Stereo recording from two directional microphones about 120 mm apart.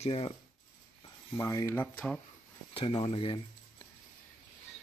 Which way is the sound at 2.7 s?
50° left (ahead or behind).